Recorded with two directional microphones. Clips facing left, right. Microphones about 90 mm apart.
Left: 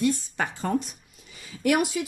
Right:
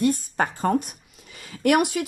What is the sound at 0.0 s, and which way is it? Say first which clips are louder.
Speech: right 3 dB; 50° right (ahead or behind).